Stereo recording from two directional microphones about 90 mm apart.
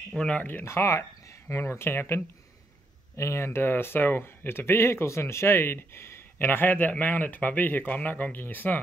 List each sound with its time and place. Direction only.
0.2 s speech: 15° left (ahead or behind)
0.7 s speech: 30° left (ahead or behind)